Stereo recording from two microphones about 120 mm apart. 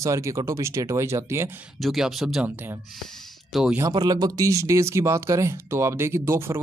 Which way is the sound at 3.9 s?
35° right (ahead or behind).